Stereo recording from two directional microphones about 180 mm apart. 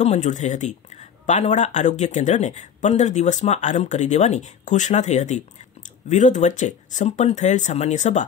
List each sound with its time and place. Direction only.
0.0 s speech: 40° left (ahead or behind)